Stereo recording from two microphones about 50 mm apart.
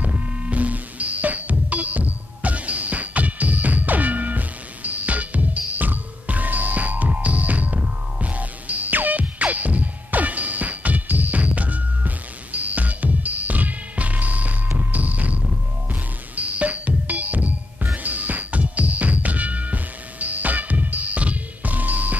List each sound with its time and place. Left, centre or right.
0.0 s music: right